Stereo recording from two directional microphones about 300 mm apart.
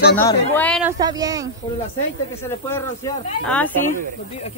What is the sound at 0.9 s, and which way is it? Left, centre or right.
Speech, centre.